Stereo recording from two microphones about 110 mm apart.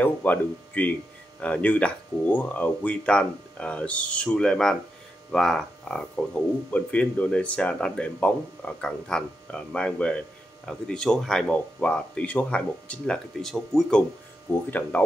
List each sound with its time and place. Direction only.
0.0 s speech: 15° left (ahead or behind)